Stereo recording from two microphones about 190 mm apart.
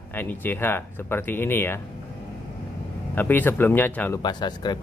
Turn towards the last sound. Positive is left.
turn(degrees=20)  # may be behind; listen again after turning